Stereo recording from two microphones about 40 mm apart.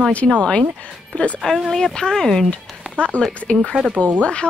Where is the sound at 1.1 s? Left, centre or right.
Left.